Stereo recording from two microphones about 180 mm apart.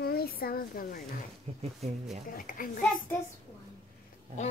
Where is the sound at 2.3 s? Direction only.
50° left (ahead or behind).